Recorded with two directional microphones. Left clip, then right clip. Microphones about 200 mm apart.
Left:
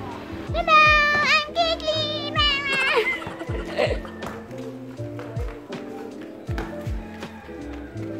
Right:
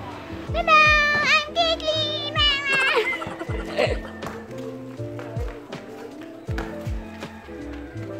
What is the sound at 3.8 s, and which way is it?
Music, 25° right (ahead or behind).